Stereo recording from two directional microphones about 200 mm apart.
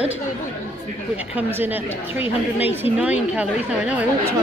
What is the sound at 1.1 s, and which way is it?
A woman's voice, 10° right (ahead or behind).